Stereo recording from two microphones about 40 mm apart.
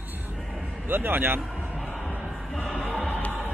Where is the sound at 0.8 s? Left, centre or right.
Right.